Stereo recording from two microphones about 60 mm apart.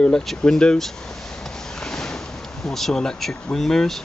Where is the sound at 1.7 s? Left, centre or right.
Centre.